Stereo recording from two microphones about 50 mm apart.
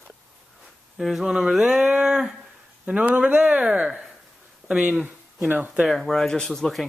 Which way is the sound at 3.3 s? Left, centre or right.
Right.